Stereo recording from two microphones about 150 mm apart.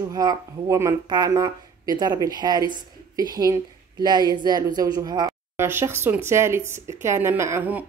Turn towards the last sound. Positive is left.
turn(degrees=-10)  # may be behind; listen again after turning